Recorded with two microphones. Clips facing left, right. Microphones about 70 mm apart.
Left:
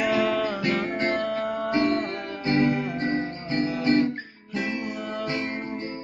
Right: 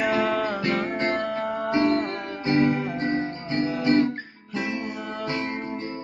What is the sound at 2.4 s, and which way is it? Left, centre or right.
Music, right.